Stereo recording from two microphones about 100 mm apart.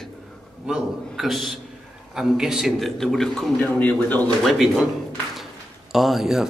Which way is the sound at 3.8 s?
15° left (ahead or behind).